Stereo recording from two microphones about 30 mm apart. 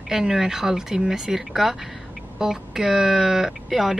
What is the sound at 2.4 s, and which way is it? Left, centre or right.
Speech, centre.